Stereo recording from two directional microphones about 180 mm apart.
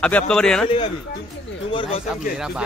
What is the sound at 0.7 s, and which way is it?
A man's voice, 30° left (ahead or behind).